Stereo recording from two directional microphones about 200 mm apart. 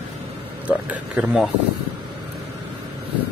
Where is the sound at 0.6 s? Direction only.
5° right (ahead or behind).